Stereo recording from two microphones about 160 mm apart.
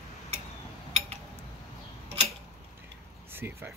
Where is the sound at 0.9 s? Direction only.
40° right (ahead or behind).